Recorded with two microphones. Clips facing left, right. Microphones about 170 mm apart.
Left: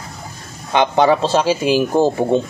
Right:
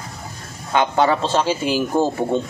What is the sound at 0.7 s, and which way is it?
Speech, 20° left (ahead or behind).